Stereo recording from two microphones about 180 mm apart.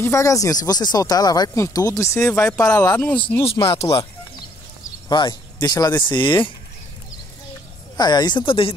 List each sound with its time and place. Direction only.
0.0 s speech: 15° left (ahead or behind)
3.4 s speech: 30° left (ahead or behind)
3.8 s speech: 20° left (ahead or behind)
8.0 s speech: 25° left (ahead or behind)